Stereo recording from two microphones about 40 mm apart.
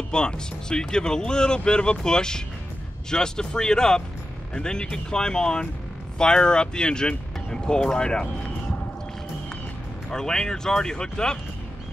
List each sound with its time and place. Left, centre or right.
0.1 s speech: left
10.1 s speech: centre